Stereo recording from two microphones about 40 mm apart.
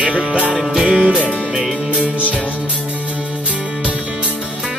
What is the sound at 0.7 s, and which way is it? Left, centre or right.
Music, centre.